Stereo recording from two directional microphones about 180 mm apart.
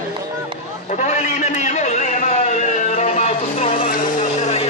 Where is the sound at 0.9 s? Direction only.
40° left (ahead or behind).